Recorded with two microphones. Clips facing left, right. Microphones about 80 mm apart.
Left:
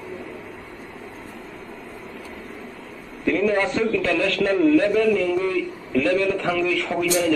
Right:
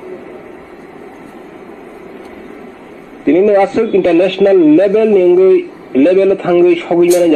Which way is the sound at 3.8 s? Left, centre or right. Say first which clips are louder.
Right 12 dB; right.